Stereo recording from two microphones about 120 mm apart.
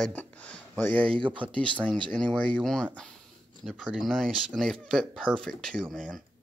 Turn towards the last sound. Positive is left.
turn(degrees=5)  # may be behind; listen again after turning